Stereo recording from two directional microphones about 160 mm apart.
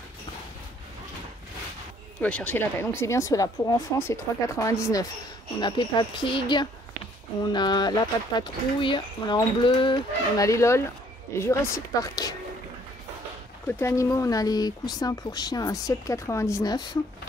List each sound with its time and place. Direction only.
2.2 s speech: 10° left (ahead or behind)
13.7 s speech: 15° left (ahead or behind)